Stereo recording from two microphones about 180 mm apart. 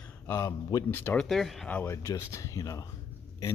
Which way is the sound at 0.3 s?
15° left (ahead or behind).